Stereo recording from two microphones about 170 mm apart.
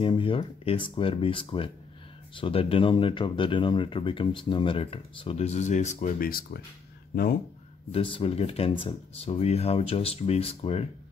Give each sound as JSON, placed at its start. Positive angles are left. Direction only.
{"t": 0.0, "sound": "speech", "side_deg": 30}
{"t": 7.9, "sound": "speech", "side_deg": 35}